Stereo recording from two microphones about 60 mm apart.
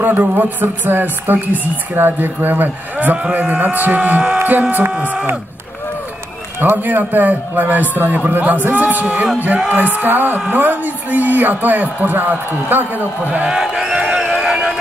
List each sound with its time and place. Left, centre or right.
0.0 s speech: right
6.6 s speech: right
13.6 s speech: centre
14.1 s a sound: centre